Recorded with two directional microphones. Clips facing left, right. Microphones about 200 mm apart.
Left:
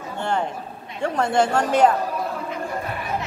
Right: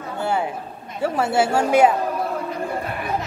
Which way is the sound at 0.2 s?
5° right (ahead or behind).